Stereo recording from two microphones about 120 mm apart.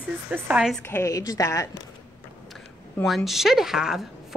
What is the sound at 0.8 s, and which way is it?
Speech, 20° left (ahead or behind).